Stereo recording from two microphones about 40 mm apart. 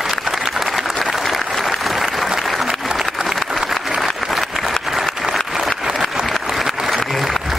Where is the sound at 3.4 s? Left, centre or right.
Centre.